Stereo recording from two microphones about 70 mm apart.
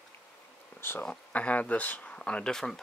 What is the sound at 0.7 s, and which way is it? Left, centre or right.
Insect, left.